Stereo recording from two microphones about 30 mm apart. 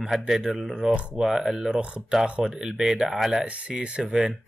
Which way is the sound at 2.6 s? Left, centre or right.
Centre.